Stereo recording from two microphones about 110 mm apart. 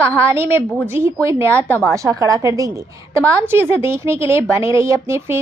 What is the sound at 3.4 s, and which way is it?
Speech, 20° right (ahead or behind).